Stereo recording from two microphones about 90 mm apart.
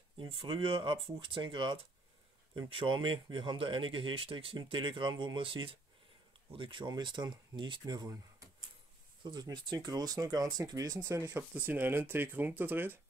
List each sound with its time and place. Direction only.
0.2 s speech: 80° right; by 11.4 s 35° right (ahead or behind)
11.5 s speech: 20° right (ahead or behind)